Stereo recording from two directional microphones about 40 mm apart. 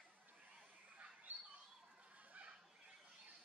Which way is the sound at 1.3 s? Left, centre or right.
Right.